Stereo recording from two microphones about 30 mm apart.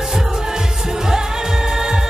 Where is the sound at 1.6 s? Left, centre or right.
Right.